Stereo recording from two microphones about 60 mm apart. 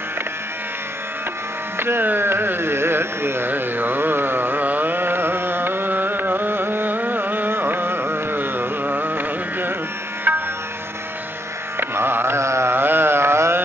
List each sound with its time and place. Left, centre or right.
1.8 s carnatic music: right
10.3 s music: right
11.9 s carnatic music: right